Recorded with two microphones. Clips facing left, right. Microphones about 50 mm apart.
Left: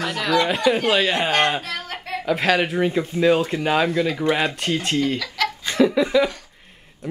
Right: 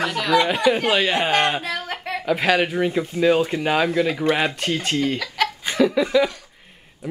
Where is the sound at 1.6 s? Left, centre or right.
Centre.